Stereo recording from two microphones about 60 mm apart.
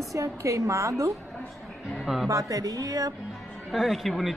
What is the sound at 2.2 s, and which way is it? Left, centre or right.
Speech, right.